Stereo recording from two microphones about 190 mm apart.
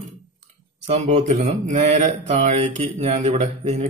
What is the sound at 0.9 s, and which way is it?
Speech, 40° right (ahead or behind).